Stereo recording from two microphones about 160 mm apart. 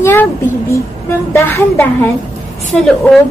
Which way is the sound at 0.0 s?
10° left (ahead or behind).